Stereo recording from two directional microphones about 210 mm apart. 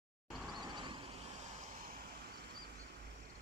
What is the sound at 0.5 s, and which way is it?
Vehicle, 20° right (ahead or behind).